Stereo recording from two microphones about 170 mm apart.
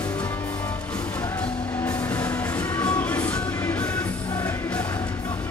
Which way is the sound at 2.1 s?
10° left (ahead or behind).